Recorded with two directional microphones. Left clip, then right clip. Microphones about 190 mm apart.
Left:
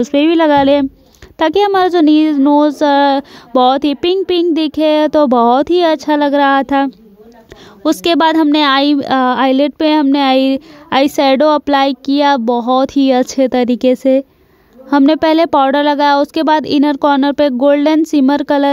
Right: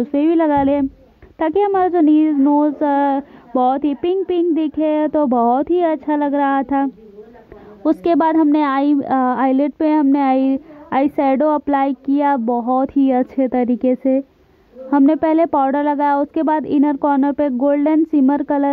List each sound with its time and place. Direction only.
0.0 s a woman's voice: 35° left (ahead or behind)